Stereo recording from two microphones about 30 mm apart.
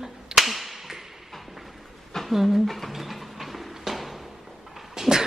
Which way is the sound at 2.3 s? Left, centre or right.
Centre.